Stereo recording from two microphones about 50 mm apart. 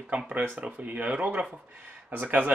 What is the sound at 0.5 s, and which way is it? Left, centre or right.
Speech, right.